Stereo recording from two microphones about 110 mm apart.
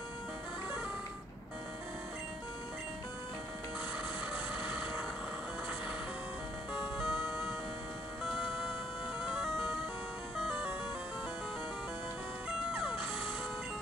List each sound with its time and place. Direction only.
6.7 s music: centre (ahead or behind)
9.3 s music: centre (ahead or behind)